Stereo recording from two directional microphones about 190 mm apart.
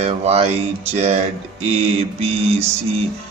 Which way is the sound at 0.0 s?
30° right (ahead or behind).